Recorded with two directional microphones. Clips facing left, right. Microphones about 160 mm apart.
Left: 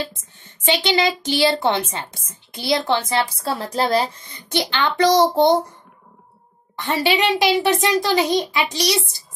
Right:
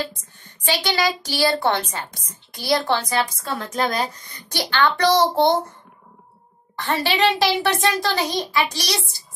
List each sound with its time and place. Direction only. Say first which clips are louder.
0.2 s a woman's voice: left 4 dB; 25° left (ahead or behind)
6.8 s a woman's voice: left 1 dB; 15° left (ahead or behind)